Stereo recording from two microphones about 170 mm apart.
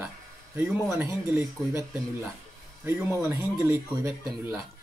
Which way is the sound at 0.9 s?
15° right (ahead or behind).